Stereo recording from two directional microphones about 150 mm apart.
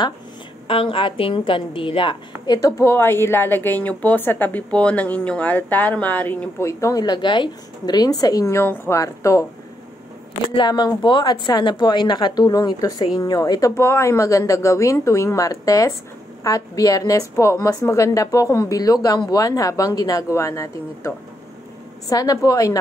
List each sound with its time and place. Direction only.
0.7 s a woman's voice: 35° left (ahead or behind); by 9.5 s 20° left (ahead or behind)
10.5 s a woman's voice: 30° left (ahead or behind)
22.1 s a woman's voice: 25° left (ahead or behind)